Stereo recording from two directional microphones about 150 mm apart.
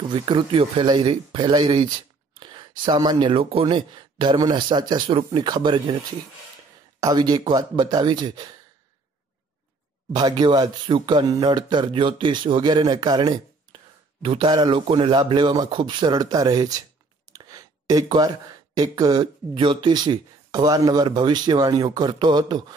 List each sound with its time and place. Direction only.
0.1 s speech: 30° right (ahead or behind)
10.1 s speech: 30° right (ahead or behind)
17.3 s a sound: 25° right (ahead or behind)
18.8 s speech: 25° right (ahead or behind)